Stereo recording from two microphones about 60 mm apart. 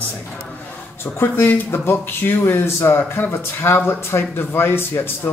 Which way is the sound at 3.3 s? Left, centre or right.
Left.